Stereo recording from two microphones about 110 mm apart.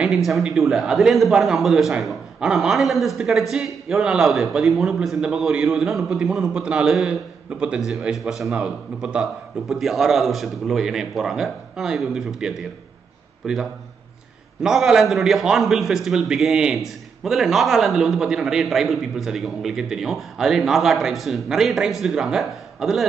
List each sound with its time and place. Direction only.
0.0 s a man's voice: centre (ahead or behind)